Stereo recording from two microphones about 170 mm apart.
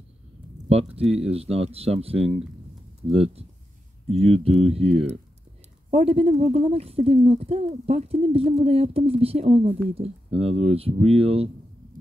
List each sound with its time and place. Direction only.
1.1 s speech: 35° right (ahead or behind)